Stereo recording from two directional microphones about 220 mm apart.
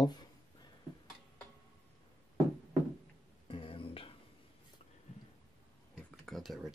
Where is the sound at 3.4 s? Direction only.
25° left (ahead or behind).